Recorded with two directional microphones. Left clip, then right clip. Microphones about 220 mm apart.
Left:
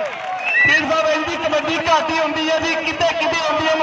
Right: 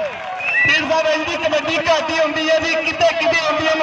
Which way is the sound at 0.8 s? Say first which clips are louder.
Even; 40° right (ahead or behind).